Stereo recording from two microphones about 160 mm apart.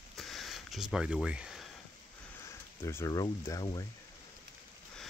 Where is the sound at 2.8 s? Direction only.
20° left (ahead or behind).